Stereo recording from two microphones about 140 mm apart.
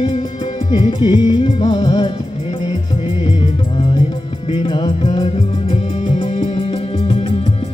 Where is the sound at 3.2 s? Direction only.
40° left (ahead or behind).